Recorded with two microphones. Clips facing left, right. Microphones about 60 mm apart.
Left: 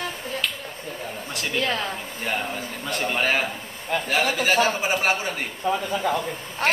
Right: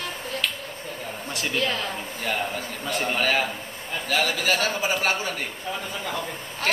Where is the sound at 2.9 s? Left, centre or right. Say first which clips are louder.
Even; centre.